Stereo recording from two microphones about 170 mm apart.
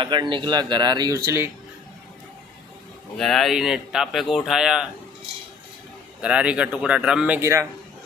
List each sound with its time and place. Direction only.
0.0 s speech: 25° right (ahead or behind)
3.2 s speech: centre (ahead or behind)
6.2 s speech: 5° right (ahead or behind)